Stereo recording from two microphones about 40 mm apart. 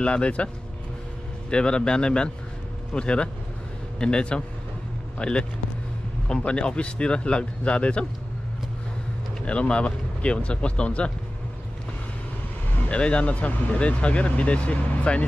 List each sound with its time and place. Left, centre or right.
0.0 s speech: left
1.5 s speech: left
9.4 s speech: left
12.8 s speech: left